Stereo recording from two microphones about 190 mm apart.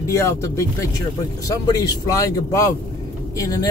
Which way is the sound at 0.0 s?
15° left (ahead or behind).